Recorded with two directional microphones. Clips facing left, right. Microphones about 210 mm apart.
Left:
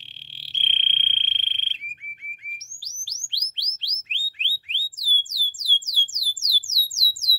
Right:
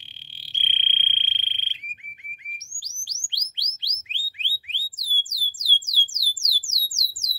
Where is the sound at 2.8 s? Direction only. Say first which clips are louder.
Even; 15° right (ahead or behind).